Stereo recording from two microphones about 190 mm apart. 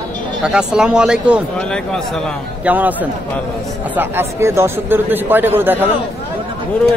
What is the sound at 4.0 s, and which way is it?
A man's voice, 10° right (ahead or behind).